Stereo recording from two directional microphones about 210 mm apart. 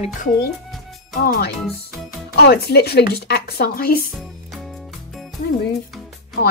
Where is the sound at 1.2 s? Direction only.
45° left (ahead or behind).